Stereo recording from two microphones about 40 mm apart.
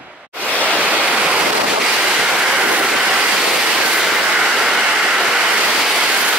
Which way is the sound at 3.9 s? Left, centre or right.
Centre.